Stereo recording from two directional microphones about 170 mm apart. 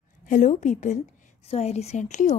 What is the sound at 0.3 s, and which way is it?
A woman's voice, 45° left (ahead or behind).